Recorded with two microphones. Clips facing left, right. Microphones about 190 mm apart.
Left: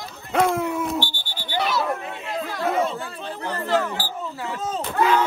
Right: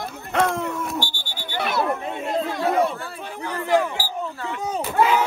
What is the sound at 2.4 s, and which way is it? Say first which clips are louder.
Chatter: right 1 dB; 20° right (ahead or behind).